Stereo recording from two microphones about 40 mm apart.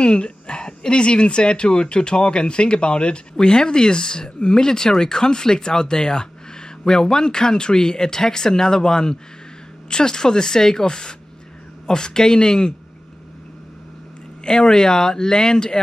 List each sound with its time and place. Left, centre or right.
0.0 s speech: left
14.4 s speech: centre